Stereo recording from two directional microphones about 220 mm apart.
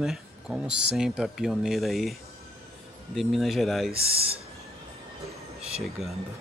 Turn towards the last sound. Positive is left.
turn(degrees=0)  # may be behind; listen again after turning